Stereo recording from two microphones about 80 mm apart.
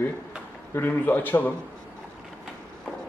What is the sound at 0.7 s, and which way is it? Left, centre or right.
Speech, left.